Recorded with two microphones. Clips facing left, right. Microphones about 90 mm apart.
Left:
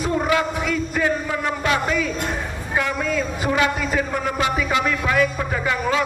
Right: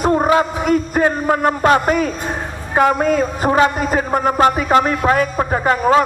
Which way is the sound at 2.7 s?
50° right (ahead or behind).